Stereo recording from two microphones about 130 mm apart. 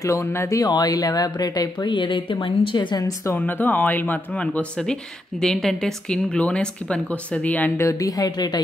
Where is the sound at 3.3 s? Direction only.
15° left (ahead or behind).